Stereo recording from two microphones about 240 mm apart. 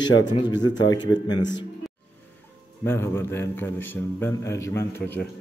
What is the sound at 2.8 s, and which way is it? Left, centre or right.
A man's voice, centre.